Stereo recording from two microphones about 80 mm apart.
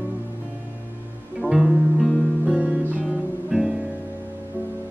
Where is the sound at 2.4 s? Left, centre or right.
Centre.